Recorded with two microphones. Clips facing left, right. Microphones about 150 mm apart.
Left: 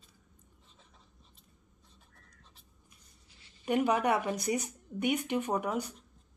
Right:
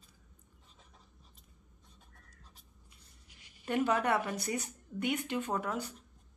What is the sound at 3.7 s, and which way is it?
Speech, 15° left (ahead or behind).